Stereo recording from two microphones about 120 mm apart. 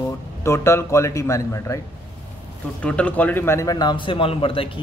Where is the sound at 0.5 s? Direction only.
20° left (ahead or behind).